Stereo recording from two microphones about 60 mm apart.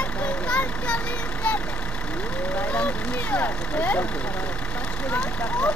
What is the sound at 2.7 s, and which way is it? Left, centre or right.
Speech, left.